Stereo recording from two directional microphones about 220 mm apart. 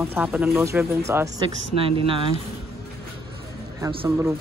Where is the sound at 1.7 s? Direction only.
25° right (ahead or behind).